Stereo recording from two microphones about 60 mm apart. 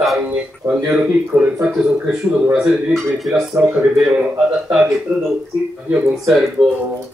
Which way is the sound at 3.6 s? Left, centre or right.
Centre.